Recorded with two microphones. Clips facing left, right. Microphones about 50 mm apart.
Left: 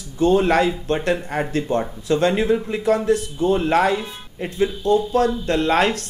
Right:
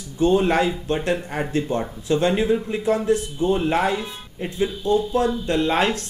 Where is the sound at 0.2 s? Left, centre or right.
Left.